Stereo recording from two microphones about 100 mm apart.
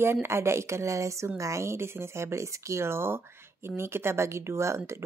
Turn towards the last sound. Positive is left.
turn(degrees=-30)  # may be behind; listen again after turning